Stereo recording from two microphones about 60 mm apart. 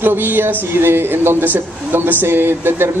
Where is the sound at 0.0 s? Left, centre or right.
Right.